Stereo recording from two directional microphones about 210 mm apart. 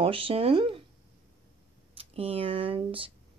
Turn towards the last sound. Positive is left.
turn(degrees=-25)  # may be behind; listen again after turning